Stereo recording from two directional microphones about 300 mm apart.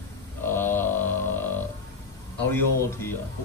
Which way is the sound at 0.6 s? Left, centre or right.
Centre.